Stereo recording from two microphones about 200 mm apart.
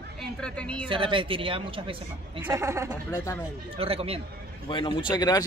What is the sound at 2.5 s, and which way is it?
Speech, 15° right (ahead or behind).